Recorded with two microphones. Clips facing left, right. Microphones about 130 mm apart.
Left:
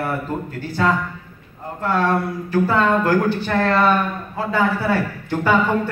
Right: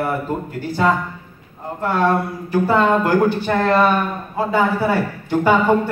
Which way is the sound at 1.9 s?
20° right (ahead or behind).